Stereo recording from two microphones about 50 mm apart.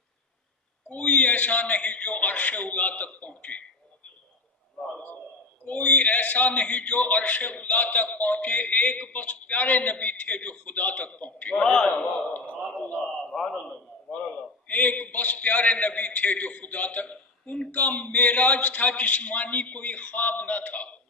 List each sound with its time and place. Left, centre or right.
0.8 s a man's voice: left
4.8 s a sound: centre
5.9 s a man's voice: left
11.6 s a man's voice: centre
12.8 s a man's voice: left
13.2 s a sound: centre
13.5 s a man's voice: centre
14.7 s a man's voice: left